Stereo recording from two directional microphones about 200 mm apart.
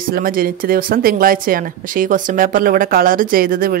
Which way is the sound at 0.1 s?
45° right (ahead or behind).